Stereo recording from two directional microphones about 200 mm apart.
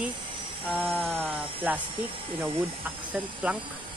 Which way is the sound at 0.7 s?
Centre (ahead or behind).